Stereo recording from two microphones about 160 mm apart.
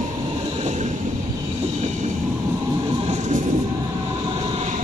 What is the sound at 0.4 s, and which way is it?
Train, 40° right (ahead or behind).